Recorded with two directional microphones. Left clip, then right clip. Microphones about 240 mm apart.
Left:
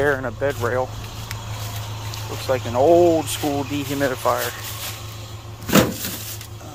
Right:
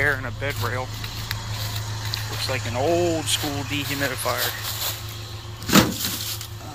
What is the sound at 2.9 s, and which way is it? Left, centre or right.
Speech, left.